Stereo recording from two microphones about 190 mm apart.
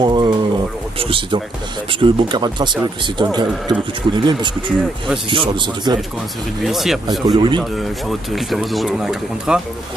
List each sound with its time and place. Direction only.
0.0 s a sound: 25° right (ahead or behind)
0.9 s speech: 30° right (ahead or behind)
6.6 s speech: centre (ahead or behind)
7.2 s speech: 25° right (ahead or behind)
7.7 s speech: centre (ahead or behind)